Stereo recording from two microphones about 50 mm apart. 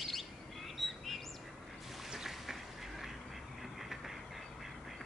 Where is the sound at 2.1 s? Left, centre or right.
Centre.